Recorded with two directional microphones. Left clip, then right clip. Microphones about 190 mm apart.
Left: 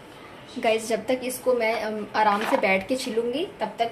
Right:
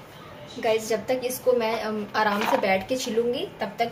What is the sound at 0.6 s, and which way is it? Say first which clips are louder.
A woman's voice: left 1 dB; 35° left (ahead or behind).